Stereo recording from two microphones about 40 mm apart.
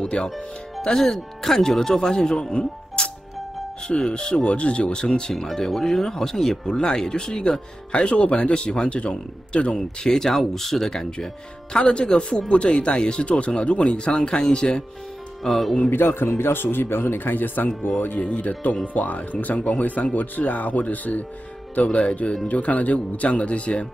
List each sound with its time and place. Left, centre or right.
0.0 s speech: left
0.9 s speech: centre
3.8 s speech: left
5.3 s speech: centre; by 9.8 s left
9.8 s speech: centre
10.9 s speech: centre
15.4 s speech: centre
15.9 s a man's voice: left
18.2 s speech: left